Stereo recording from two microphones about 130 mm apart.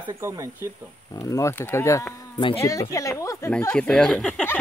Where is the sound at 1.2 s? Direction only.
25° left (ahead or behind).